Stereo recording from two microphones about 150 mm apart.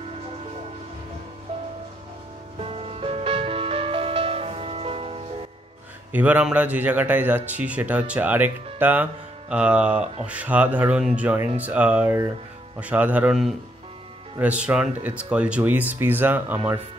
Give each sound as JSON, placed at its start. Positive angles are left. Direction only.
{"t": 2.7, "sound": "music", "side_deg": -40}
{"t": 6.1, "sound": "speech", "side_deg": -10}